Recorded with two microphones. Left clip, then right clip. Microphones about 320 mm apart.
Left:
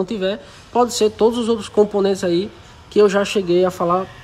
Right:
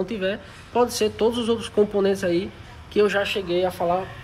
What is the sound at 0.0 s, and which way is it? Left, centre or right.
A woman's voice, centre.